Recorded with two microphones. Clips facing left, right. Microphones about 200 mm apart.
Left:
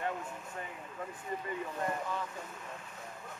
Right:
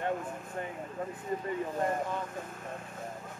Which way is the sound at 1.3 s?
45° right (ahead or behind).